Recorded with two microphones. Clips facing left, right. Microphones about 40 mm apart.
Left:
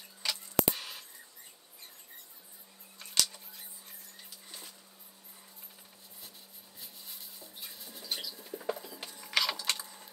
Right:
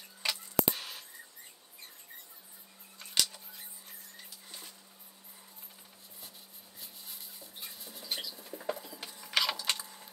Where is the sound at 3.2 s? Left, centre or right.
Centre.